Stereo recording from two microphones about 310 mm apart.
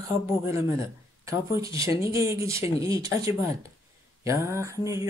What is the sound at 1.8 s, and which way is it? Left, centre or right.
Speech, centre.